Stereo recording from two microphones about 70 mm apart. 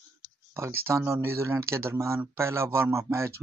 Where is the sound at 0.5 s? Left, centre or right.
Right.